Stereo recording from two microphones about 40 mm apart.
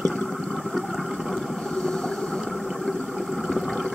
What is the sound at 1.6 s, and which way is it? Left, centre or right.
Boat, centre.